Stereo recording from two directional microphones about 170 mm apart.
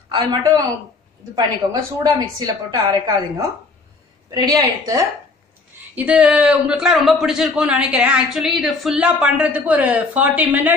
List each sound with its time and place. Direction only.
0.1 s a woman's voice: 25° right (ahead or behind)
5.9 s a man's voice: 5° right (ahead or behind)